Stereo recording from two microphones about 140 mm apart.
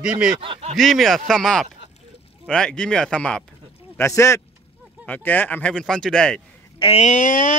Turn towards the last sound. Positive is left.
turn(degrees=65)  # may be behind; listen again after turning